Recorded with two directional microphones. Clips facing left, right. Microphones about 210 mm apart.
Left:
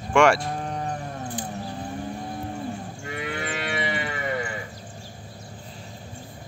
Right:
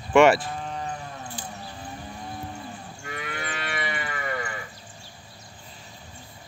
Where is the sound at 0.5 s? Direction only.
50° left (ahead or behind).